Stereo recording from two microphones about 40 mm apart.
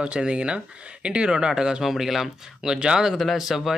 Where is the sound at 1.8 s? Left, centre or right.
Centre.